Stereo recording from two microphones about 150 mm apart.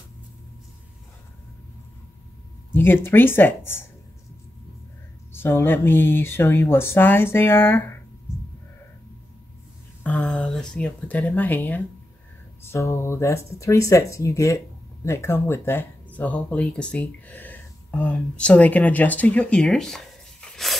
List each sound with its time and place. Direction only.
2.7 s speech: 15° left (ahead or behind)
5.3 s speech: 15° left (ahead or behind)
10.0 s a sound: 10° left (ahead or behind)
12.6 s speech: 20° left (ahead or behind); by 20.7 s centre (ahead or behind)